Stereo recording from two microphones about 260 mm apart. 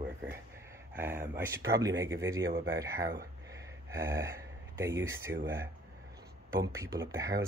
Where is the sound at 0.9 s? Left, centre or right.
Centre.